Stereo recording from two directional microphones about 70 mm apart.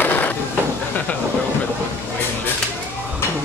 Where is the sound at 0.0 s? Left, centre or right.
Left.